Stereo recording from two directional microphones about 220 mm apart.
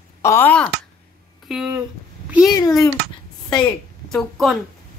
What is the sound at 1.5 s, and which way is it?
Speech, 5° right (ahead or behind).